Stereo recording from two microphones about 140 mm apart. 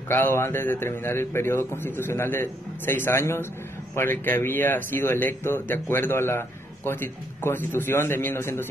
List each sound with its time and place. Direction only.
0.1 s speech: 15° left (ahead or behind)